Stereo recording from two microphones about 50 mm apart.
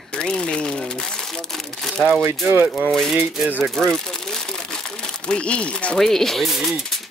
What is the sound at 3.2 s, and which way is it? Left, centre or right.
Rattle, right.